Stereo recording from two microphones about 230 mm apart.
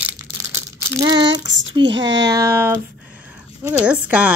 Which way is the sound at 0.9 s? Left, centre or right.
Centre.